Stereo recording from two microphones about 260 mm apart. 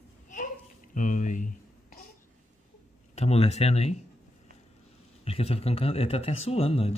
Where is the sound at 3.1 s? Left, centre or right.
Left.